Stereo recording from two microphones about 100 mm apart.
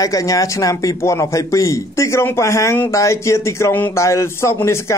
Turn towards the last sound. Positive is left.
turn(degrees=25)  # may be behind; listen again after turning